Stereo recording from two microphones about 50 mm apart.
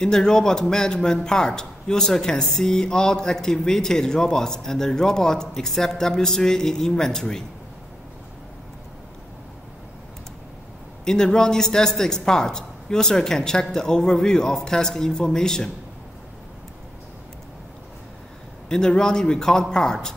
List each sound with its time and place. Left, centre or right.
0.0 s a man's voice: centre
11.1 s a man's voice: centre
18.7 s a man's voice: centre